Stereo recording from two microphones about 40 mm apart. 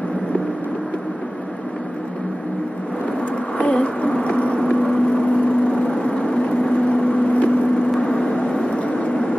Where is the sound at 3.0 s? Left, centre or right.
Left.